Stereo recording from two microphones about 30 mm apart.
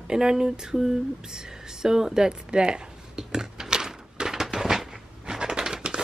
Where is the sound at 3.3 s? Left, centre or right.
Centre.